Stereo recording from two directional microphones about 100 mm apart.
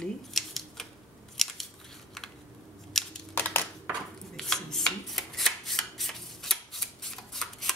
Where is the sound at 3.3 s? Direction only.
20° left (ahead or behind).